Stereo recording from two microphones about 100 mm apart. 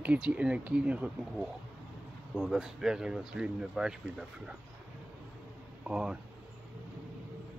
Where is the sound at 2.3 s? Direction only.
Centre (ahead or behind).